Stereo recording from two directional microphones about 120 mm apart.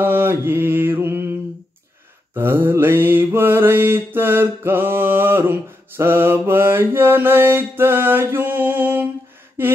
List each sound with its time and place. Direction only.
0.0 s mantra: 20° right (ahead or behind)
2.3 s mantra: 20° right (ahead or behind)